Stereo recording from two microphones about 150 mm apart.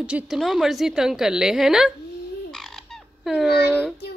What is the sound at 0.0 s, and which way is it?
A woman's voice, 5° right (ahead or behind).